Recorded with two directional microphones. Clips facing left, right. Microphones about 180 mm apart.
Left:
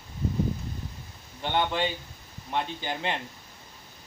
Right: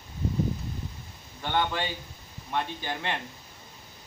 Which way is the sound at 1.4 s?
20° left (ahead or behind).